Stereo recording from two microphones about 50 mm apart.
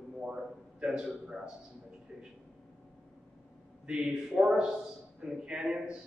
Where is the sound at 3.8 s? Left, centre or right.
Centre.